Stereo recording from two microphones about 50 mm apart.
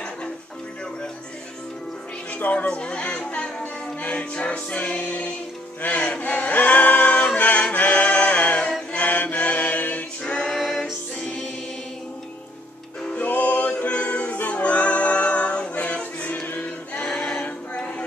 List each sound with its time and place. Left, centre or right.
2.3 s speech: left
2.6 s music: left
5.8 s male singing: left
7.3 s music: left
8.9 s mantra: left
10.2 s singing: centre
10.5 s music: centre
13.0 s music: left
16.4 s choir: left
17.0 s choir: centre